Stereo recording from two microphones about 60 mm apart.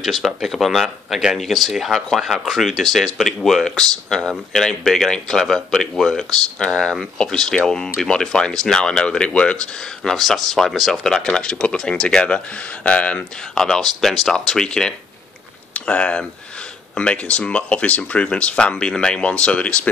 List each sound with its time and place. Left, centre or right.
0.0 s speech: centre
10.1 s speech: centre
13.6 s speech: centre